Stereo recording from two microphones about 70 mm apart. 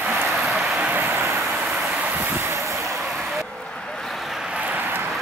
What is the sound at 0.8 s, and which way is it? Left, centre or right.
Vehicle, right.